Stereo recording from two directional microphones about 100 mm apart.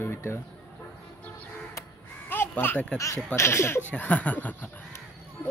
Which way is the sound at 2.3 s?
20° left (ahead or behind).